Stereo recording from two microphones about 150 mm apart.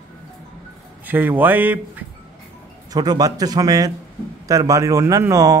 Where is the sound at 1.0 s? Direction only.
10° right (ahead or behind).